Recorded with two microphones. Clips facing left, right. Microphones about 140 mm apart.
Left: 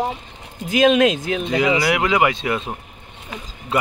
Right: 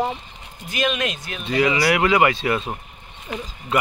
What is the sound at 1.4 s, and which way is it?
Speech, 20° left (ahead or behind).